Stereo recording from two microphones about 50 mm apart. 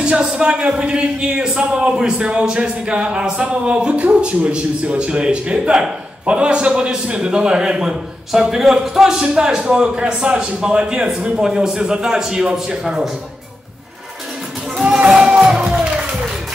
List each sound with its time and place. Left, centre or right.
0.0 s a man's voice: centre
14.8 s music: centre